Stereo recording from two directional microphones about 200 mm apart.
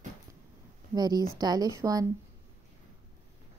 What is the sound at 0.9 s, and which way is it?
A woman's voice, 20° right (ahead or behind).